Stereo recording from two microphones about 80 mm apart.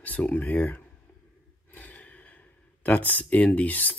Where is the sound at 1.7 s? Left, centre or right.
Centre.